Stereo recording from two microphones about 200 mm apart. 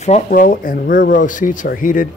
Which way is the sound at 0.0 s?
40° left (ahead or behind).